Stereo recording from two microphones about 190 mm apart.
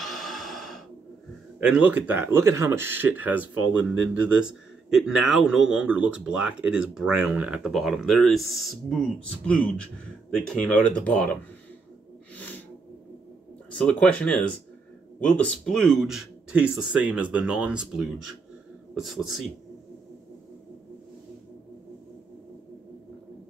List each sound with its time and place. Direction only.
0.0 s music: centre (ahead or behind)
1.6 s speech: 5° right (ahead or behind)
12.4 s snort: 10° left (ahead or behind)
13.7 s speech: 5° left (ahead or behind)